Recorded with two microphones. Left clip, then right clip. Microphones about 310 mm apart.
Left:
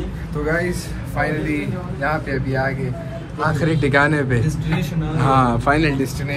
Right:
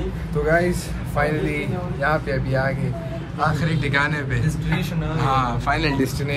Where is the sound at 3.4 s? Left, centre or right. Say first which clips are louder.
Left 3 dB; centre.